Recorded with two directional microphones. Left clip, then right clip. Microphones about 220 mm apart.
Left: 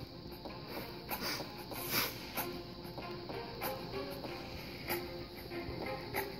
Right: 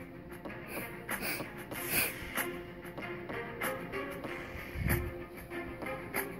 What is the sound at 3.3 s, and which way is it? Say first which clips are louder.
Music: right 4 dB; 15° right (ahead or behind).